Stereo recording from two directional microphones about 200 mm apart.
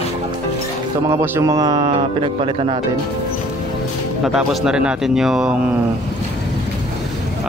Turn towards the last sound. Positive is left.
turn(degrees=-5)  # may be behind; listen again after turning